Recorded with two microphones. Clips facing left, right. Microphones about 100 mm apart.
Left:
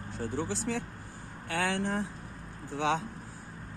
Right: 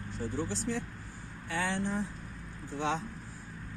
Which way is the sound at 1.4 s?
70° left (ahead or behind).